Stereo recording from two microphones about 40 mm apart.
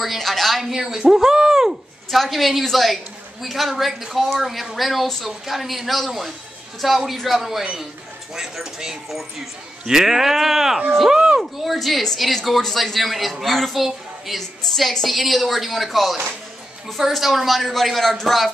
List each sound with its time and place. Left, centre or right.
0.0 s speech: centre
0.7 s speech: centre
2.0 s speech: centre
9.8 s speech: centre
11.1 s a sound: right
11.6 s speech: centre